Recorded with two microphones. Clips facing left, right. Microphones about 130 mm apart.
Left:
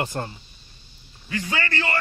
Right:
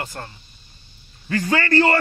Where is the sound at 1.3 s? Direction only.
50° right (ahead or behind).